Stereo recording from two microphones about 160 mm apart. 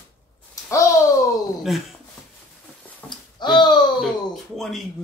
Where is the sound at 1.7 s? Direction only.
Centre (ahead or behind).